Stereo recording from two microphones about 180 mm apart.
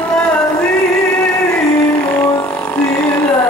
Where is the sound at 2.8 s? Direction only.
20° left (ahead or behind).